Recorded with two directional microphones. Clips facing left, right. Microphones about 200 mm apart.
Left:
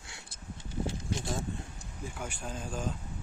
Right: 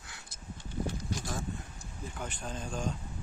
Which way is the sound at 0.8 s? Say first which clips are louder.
Left 3 dB; 25° left (ahead or behind).